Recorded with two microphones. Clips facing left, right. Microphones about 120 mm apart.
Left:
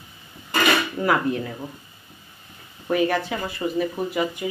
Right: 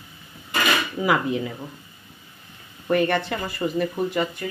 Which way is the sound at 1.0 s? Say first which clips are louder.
Even; centre (ahead or behind).